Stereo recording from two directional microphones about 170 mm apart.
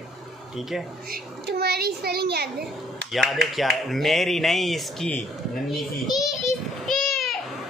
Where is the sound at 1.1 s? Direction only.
70° right (ahead or behind).